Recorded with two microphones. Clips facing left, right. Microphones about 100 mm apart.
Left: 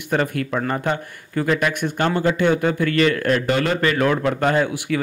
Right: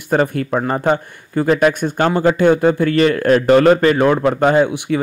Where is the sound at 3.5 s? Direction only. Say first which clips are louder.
Right 10 dB; 45° right (ahead or behind).